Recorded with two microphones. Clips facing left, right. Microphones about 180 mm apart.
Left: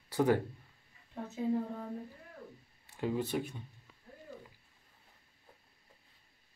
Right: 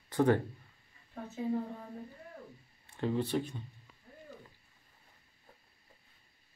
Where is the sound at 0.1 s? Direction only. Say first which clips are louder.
Right 1 dB; 10° left (ahead or behind).